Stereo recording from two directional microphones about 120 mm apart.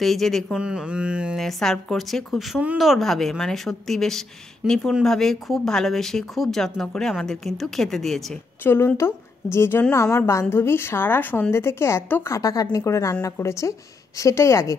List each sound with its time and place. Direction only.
0.0 s speech: centre (ahead or behind)
0.6 s a sound: 10° right (ahead or behind)
1.4 s speech: 5° left (ahead or behind)
8.6 s speech: 20° left (ahead or behind)